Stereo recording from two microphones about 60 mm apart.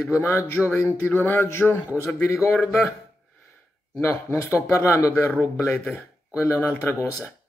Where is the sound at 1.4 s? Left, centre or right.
Left.